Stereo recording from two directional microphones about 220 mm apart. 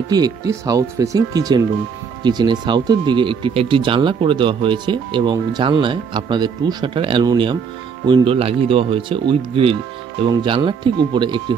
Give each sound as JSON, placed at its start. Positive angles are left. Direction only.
{"t": 0.1, "sound": "speech", "side_deg": -15}